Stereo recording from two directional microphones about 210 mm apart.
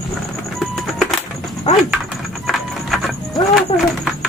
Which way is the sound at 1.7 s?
30° left (ahead or behind).